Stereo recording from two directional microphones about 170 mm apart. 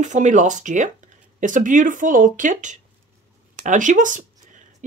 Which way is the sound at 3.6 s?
50° right (ahead or behind).